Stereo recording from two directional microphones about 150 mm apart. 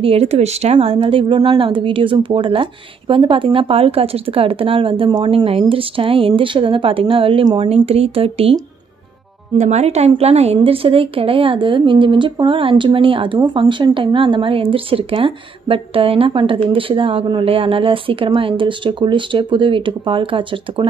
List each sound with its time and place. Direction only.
0.0 s a woman's voice: 40° right (ahead or behind)
9.6 s a woman's voice: 50° right (ahead or behind)